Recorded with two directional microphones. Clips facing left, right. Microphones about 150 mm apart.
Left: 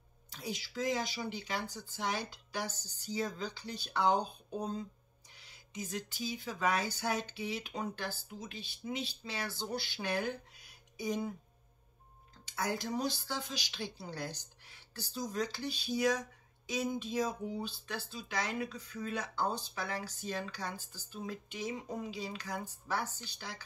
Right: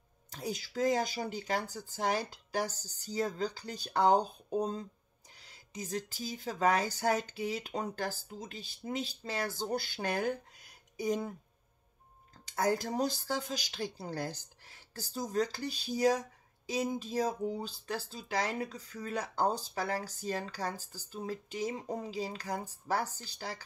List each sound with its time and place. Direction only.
0.3 s speech: 45° right (ahead or behind)
12.5 s speech: 40° right (ahead or behind)